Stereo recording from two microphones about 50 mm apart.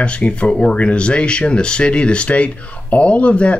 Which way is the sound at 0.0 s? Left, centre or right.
Left.